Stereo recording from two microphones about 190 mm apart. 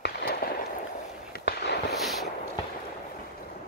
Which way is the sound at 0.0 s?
55° left (ahead or behind).